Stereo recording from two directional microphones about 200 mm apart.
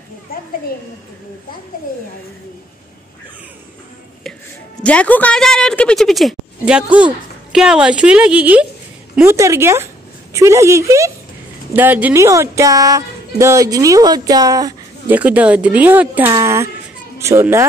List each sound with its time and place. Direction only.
0.3 s a child's voice: 50° left (ahead or behind)
4.8 s a woman's voice: 5° left (ahead or behind); by 17.6 s 15° right (ahead or behind)